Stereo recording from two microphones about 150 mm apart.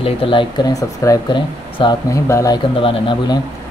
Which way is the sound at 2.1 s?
20° left (ahead or behind).